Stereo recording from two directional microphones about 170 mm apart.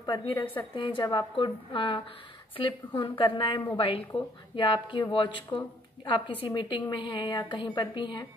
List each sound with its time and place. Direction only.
0.0 s a woman's voice: 25° left (ahead or behind)